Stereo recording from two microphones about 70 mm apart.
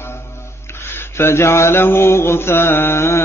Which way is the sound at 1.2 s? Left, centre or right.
Left.